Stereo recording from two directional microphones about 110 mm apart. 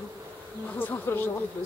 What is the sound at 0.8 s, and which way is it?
Speech, 15° left (ahead or behind).